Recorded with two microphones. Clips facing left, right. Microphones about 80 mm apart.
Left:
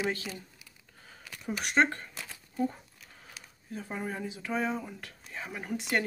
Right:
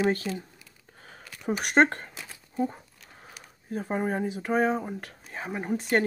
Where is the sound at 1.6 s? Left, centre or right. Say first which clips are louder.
Right 5 dB; right.